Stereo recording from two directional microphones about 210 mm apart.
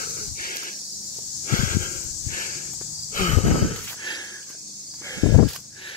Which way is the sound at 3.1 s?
40° left (ahead or behind).